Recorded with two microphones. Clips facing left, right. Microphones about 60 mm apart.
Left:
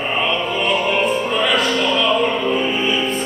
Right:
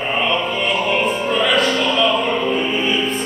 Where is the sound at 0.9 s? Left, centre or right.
Centre.